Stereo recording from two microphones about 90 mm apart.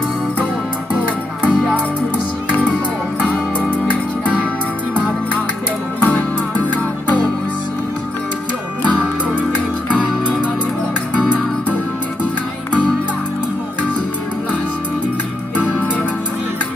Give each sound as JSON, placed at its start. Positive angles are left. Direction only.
{"t": 0.9, "sound": "music", "side_deg": -15}
{"t": 3.3, "sound": "music", "side_deg": 15}
{"t": 5.9, "sound": "music", "side_deg": 15}